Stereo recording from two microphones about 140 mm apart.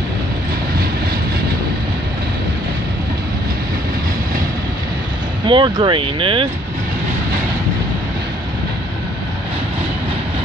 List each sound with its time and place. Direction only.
5.5 s speech: 35° right (ahead or behind)